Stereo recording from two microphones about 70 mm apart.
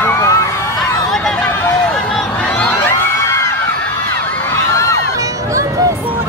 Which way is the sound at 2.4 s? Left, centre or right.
Centre.